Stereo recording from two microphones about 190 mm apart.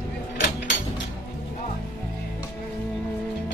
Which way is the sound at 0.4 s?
65° left (ahead or behind).